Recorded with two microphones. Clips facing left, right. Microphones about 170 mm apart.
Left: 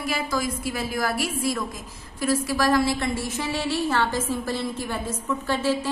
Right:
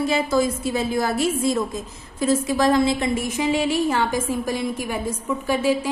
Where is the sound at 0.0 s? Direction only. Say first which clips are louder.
Right 7 dB; 25° right (ahead or behind).